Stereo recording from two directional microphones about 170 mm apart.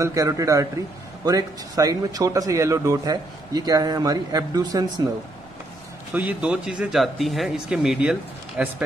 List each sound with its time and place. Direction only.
0.0 s speech: 20° right (ahead or behind)
6.1 s speech: 10° right (ahead or behind)